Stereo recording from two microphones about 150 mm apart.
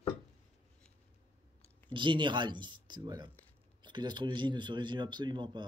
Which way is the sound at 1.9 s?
35° right (ahead or behind).